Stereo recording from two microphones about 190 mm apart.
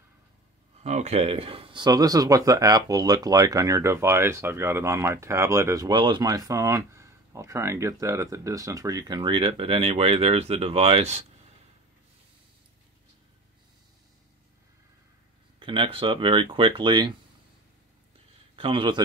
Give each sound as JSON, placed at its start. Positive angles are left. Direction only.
{"t": 0.8, "sound": "speech", "side_deg": -35}
{"t": 15.6, "sound": "speech", "side_deg": -25}
{"t": 18.6, "sound": "speech", "side_deg": -25}